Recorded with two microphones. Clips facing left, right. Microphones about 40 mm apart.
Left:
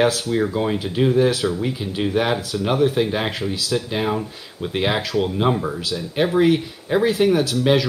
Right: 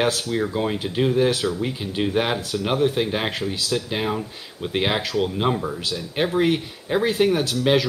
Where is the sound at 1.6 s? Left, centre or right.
Centre.